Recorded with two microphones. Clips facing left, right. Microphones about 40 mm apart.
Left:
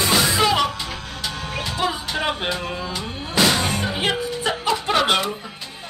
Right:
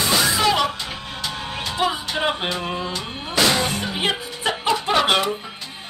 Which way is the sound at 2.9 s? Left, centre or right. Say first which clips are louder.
Even; centre.